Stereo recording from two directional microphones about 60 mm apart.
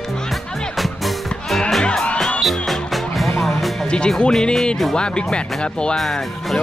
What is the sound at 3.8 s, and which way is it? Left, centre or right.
Music, centre.